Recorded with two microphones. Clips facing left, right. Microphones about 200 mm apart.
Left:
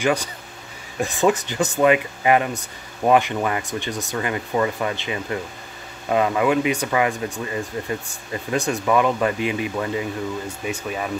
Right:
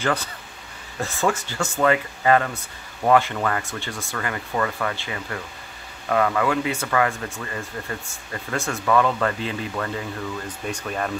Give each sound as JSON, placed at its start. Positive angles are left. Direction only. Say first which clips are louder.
{"t": 0.0, "sound": "speech", "louder": "left 3 dB", "side_deg": 15}